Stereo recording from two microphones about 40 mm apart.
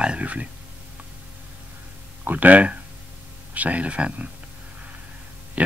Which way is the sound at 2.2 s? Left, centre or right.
Right.